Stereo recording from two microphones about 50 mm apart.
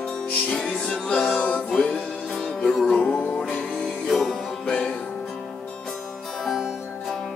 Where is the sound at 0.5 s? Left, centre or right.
Centre.